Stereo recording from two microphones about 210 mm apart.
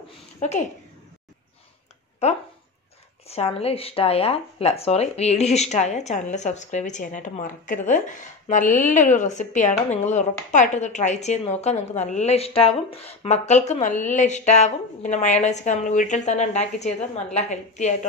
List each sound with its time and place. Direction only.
0.4 s a woman's voice: 35° left (ahead or behind)
3.3 s speech: 30° left (ahead or behind)